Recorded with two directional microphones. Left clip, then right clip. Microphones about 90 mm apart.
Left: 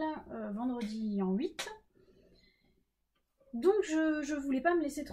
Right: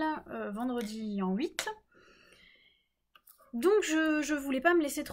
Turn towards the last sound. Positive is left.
turn(degrees=-20)  # may be behind; listen again after turning